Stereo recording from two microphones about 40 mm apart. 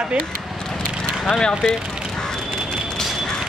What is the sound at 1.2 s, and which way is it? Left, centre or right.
Speech, left.